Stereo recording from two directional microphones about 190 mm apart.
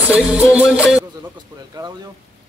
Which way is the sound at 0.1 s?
5° right (ahead or behind).